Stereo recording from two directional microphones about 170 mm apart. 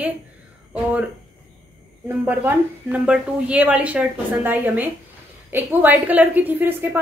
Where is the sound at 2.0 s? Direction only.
10° right (ahead or behind).